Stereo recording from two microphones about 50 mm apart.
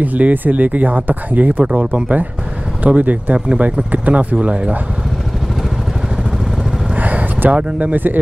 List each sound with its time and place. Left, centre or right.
0.0 s speech: right
3.3 s speech: right
3.9 s speech: right
7.0 s speech: right